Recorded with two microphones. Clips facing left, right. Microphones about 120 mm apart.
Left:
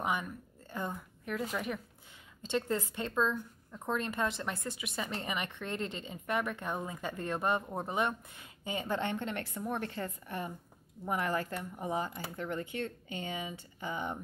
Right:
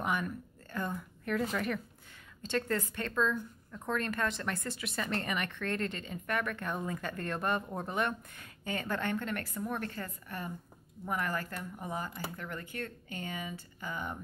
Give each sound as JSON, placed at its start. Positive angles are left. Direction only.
{"t": 0.0, "sound": "a woman's voice", "side_deg": 10}